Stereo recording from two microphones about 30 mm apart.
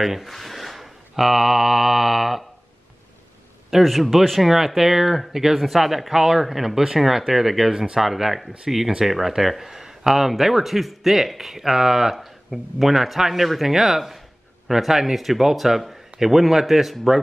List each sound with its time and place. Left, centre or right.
0.0 s speech: centre
0.3 s a sound: centre
3.8 s speech: centre
7.7 s speech: right
8.0 s speech: centre